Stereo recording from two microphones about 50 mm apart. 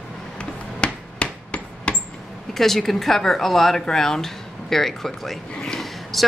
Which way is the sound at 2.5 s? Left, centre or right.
Centre.